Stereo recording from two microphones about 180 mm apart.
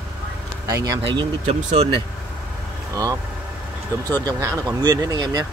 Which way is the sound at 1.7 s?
30° right (ahead or behind).